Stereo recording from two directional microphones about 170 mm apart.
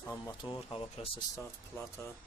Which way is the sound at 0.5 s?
35° left (ahead or behind).